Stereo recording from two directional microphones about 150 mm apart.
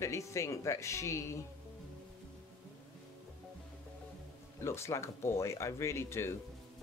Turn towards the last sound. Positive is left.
turn(degrees=20)  # may be behind; listen again after turning